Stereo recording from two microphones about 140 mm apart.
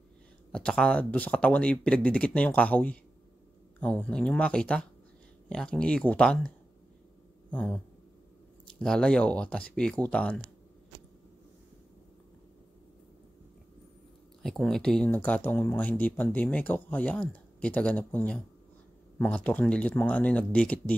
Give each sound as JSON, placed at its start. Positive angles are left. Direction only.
{"t": 0.5, "sound": "speech", "side_deg": 5}
{"t": 7.5, "sound": "speech", "side_deg": 10}
{"t": 14.4, "sound": "speech", "side_deg": 0}